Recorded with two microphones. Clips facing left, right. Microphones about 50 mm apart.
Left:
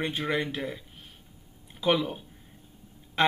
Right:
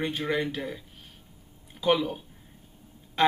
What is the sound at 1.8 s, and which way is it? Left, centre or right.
Speech, centre.